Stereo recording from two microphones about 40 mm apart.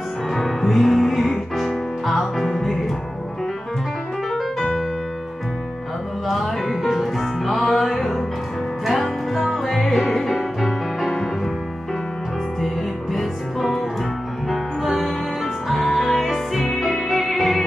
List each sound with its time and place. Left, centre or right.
0.3 s music: centre
4.3 s piano: centre
6.2 s music: centre
11.1 s music: centre
12.5 s music: centre